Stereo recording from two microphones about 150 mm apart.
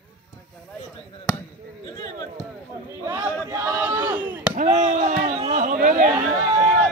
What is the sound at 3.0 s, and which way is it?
Chop, 20° right (ahead or behind).